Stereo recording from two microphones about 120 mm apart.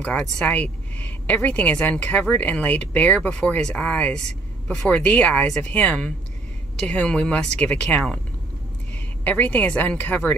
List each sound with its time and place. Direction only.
0.0 s a woman's voice: 10° left (ahead or behind)
9.2 s a woman's voice: 15° left (ahead or behind)